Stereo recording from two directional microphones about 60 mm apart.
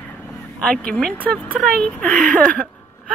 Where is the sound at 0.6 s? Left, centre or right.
Centre.